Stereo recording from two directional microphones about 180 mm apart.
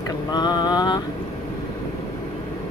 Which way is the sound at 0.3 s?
25° left (ahead or behind).